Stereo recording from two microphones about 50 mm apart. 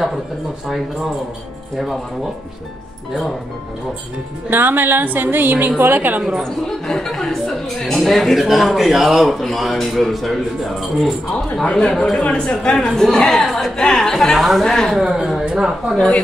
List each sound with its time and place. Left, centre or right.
4.5 s a woman's voice: right
6.4 s a woman's voice: centre
11.6 s a woman's voice: centre
12.7 s a woman's voice: centre
15.0 s speech: centre